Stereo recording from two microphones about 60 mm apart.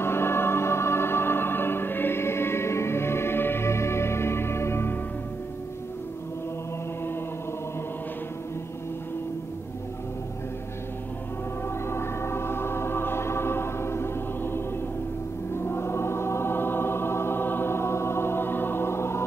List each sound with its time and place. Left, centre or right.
0.0 s music: left
11.9 s music: left
15.5 s choir: left